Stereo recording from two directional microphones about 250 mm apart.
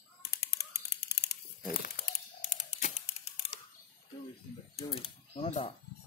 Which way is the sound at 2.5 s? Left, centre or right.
Left.